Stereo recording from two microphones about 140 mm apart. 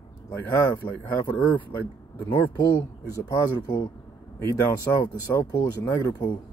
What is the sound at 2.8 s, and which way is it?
Speech, 25° left (ahead or behind).